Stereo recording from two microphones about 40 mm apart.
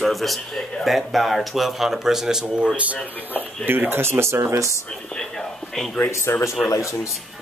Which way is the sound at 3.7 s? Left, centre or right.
Right.